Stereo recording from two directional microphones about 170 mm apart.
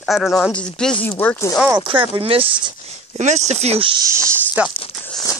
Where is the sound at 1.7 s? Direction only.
30° right (ahead or behind).